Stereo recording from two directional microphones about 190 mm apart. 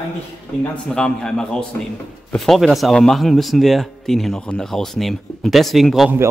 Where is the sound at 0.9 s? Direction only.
5° left (ahead or behind).